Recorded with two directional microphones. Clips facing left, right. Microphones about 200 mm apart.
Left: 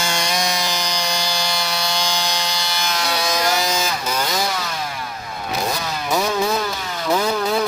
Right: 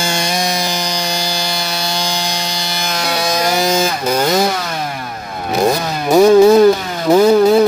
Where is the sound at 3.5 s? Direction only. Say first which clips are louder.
Right 7 dB; 50° right (ahead or behind).